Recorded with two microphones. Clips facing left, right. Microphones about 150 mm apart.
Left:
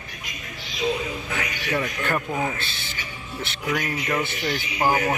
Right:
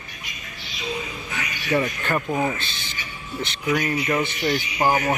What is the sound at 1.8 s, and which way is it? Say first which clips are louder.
Speech: right 2 dB; 5° right (ahead or behind).